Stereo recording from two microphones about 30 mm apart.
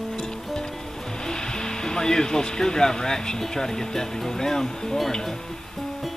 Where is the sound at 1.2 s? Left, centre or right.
Left.